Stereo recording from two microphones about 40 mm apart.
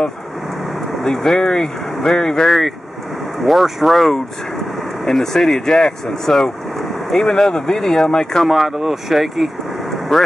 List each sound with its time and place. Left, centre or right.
1.0 s speech: centre
3.4 s speech: centre
8.5 s speech: centre